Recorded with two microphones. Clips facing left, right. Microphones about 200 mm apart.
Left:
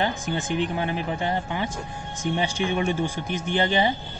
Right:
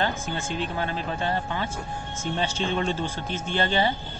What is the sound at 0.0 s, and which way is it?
Speech, 15° left (ahead or behind).